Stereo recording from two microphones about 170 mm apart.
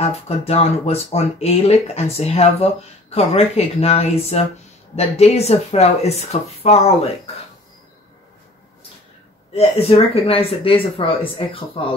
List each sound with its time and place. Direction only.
0.5 s speech: 35° left (ahead or behind)
9.5 s speech: 35° left (ahead or behind)